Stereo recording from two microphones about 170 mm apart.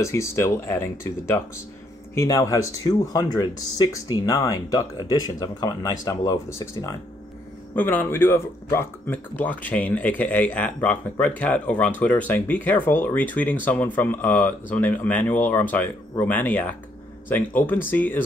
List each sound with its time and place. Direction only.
0.0 s speech: 15° left (ahead or behind)